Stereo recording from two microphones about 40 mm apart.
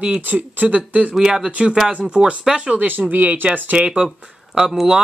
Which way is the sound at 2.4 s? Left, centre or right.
Centre.